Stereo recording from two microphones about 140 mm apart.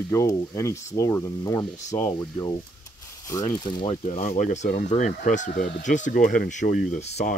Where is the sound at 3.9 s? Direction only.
55° left (ahead or behind).